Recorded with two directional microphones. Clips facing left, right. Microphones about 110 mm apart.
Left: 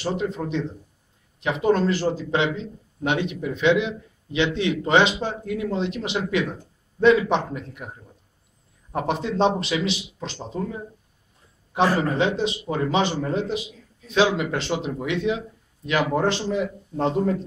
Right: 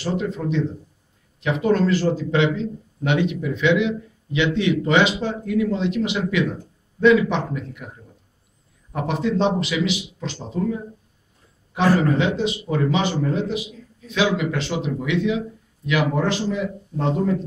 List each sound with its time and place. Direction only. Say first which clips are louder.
0.0 s a man's voice: right 1 dB; 25° left (ahead or behind)
8.9 s a man's voice: right 2 dB; 30° left (ahead or behind)
11.7 s a man's voice: right 3 dB; 30° left (ahead or behind)